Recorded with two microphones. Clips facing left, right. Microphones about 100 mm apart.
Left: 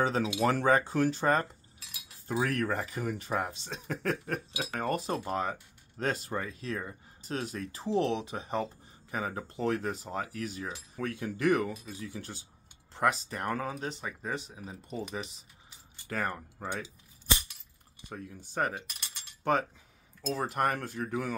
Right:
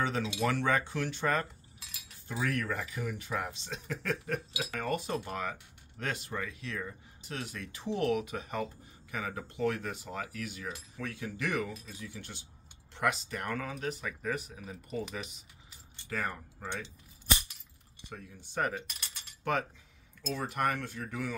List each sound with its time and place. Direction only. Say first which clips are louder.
0.0 s speech: left 4 dB; 35° left (ahead or behind)
16.1 s speech: left 2 dB; 45° left (ahead or behind)
18.1 s speech: left 2 dB; 40° left (ahead or behind)
20.3 s speech: left 2 dB; 40° left (ahead or behind)